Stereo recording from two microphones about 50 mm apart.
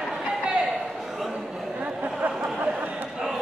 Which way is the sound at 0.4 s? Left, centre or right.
Right.